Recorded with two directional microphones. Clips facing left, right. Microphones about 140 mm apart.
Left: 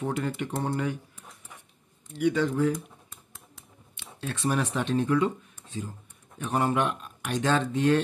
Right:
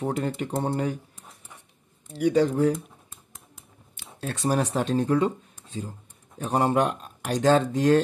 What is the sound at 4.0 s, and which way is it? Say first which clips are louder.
Speech: right 2 dB; 40° right (ahead or behind).